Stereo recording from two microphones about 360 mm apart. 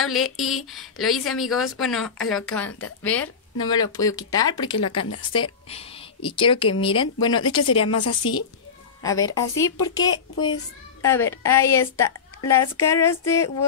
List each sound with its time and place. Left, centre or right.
0.4 s speech: centre
7.6 s speech: left
9.0 s speech: centre